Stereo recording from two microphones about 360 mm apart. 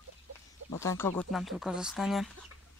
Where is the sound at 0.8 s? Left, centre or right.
Centre.